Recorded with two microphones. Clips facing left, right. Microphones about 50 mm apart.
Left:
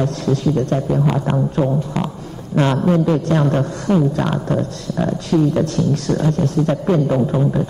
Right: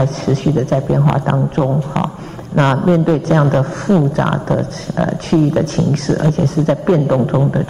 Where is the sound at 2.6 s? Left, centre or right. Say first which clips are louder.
Right 3 dB; right.